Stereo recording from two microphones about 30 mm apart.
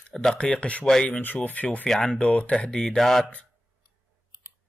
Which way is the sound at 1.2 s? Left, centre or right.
Left.